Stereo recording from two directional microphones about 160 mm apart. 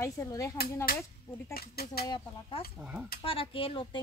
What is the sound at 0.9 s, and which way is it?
Speech, 70° left (ahead or behind).